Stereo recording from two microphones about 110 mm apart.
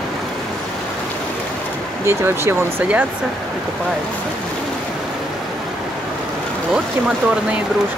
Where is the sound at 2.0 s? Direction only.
25° right (ahead or behind).